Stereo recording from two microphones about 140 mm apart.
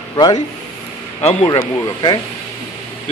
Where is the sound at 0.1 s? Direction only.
30° left (ahead or behind).